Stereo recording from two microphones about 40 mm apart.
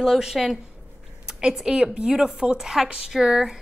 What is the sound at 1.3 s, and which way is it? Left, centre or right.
A woman's voice, centre.